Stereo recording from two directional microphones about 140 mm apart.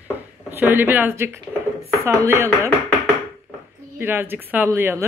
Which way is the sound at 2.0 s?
20° right (ahead or behind).